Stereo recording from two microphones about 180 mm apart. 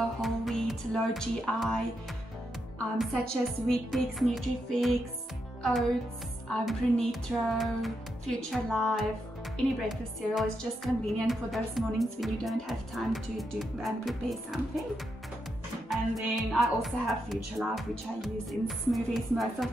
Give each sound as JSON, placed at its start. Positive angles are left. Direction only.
{"t": 0.2, "sound": "music", "side_deg": 0}
{"t": 3.4, "sound": "a woman's voice", "side_deg": 0}
{"t": 15.9, "sound": "a woman's voice", "side_deg": 0}